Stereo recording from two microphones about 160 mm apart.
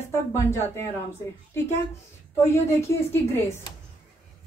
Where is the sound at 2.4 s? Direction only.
15° left (ahead or behind).